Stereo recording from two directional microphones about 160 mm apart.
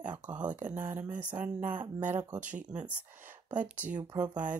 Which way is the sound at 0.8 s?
15° right (ahead or behind).